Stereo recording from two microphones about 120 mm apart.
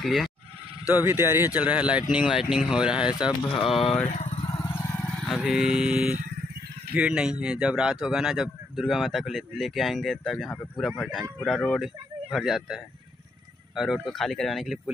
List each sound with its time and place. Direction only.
0.0 s a man's voice: centre (ahead or behind)
0.9 s a man's voice: 20° right (ahead or behind)
3.3 s speech: 45° left (ahead or behind)
4.1 s speech: 75° left (ahead or behind)
4.6 s vehicle: 20° left (ahead or behind)
4.9 s vehicle: 10° left (ahead or behind)
5.4 s a man's voice: 5° right (ahead or behind)